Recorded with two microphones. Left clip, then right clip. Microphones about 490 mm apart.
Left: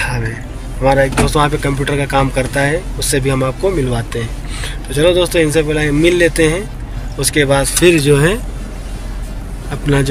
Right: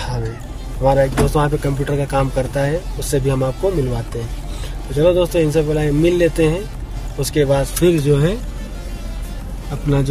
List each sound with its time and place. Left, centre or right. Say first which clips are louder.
0.8 s speech: left 3 dB; right